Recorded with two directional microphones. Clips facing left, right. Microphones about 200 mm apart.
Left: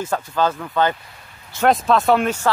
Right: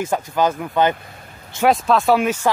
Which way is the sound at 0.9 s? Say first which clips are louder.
Right 5 dB; 50° right (ahead or behind).